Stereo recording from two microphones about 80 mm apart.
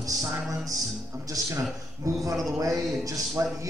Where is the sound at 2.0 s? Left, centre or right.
Right.